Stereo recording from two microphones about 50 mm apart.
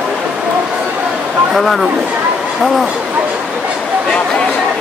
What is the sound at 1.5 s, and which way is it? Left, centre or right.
Speech, centre.